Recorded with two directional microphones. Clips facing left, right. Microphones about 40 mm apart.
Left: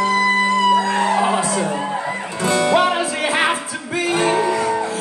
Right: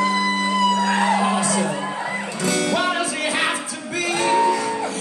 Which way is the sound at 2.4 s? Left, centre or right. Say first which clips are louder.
Left 6 dB; left.